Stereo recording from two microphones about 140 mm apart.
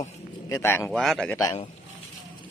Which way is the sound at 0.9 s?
5° left (ahead or behind).